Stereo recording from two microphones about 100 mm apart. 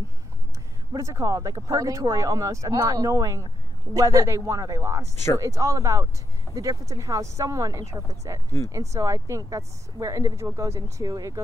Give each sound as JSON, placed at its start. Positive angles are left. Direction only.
{"t": 0.9, "sound": "speech", "side_deg": -30}